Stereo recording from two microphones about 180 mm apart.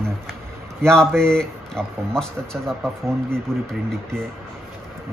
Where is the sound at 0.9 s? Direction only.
5° left (ahead or behind).